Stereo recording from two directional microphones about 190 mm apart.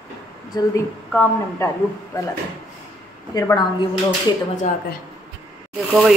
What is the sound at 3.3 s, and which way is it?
Speech, 20° left (ahead or behind).